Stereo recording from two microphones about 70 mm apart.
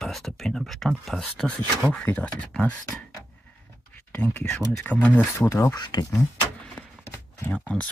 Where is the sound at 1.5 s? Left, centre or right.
Centre.